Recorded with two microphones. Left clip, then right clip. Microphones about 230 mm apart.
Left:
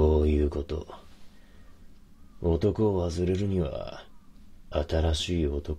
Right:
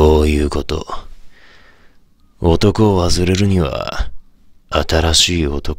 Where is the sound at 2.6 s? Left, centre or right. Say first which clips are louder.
Right 11 dB; right.